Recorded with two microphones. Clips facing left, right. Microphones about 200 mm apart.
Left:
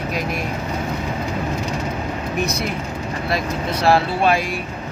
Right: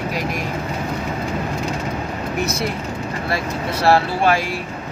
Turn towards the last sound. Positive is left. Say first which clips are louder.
# even
turn(degrees=20)  # may be behind; listen again after turning